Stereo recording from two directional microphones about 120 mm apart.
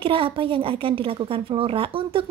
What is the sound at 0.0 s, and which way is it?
A woman's voice, 50° right (ahead or behind).